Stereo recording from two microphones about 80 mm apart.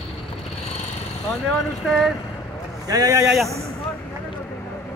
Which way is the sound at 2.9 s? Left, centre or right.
Right.